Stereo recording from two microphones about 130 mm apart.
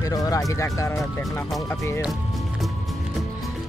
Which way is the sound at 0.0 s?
25° left (ahead or behind).